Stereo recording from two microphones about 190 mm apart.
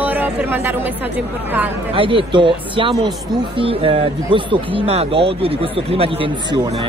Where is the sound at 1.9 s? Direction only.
25° right (ahead or behind).